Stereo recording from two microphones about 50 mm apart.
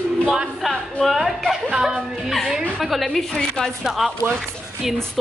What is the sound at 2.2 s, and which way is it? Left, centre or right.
A woman's voice, centre.